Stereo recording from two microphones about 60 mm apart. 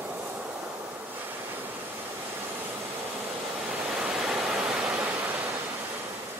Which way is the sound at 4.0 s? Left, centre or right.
Centre.